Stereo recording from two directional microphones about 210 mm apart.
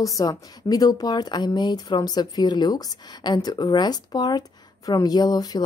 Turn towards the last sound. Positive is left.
turn(degrees=20)  # may be behind; listen again after turning